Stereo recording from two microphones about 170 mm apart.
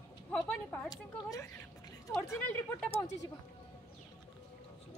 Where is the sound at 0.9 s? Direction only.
20° left (ahead or behind).